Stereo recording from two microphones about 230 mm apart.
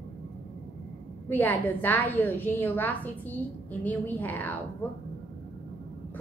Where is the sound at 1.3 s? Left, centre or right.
Centre.